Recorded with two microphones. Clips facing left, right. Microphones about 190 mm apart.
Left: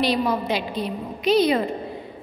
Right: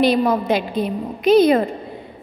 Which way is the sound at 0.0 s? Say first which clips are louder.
Right 5 dB; 50° right (ahead or behind).